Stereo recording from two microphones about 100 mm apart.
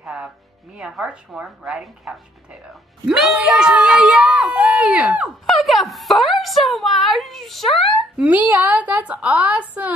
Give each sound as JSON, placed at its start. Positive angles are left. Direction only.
{"t": 0.0, "sound": "music", "side_deg": -5}
{"t": 0.7, "sound": "a woman's voice", "side_deg": -5}
{"t": 5.6, "sound": "speech", "side_deg": 0}
{"t": 8.2, "sound": "a woman's voice", "side_deg": -15}